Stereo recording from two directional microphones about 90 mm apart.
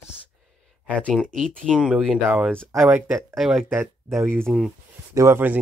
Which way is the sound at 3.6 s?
25° right (ahead or behind).